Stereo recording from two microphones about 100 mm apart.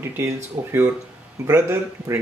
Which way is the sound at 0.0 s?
25° right (ahead or behind).